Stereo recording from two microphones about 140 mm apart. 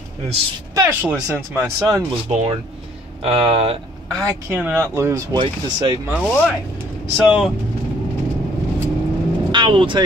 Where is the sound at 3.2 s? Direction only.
45° right (ahead or behind).